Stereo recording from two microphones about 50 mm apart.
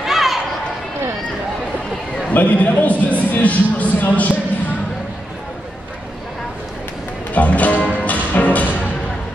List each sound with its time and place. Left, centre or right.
0.0 s a sound: centre
2.3 s a man's voice: left
7.3 s music: left